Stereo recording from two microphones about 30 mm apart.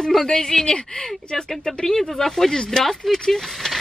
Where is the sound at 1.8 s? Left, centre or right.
Centre.